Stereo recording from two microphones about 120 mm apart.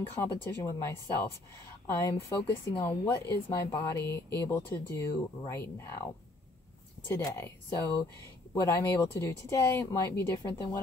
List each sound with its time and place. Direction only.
0.2 s speech: 20° left (ahead or behind)
7.2 s speech: 20° left (ahead or behind)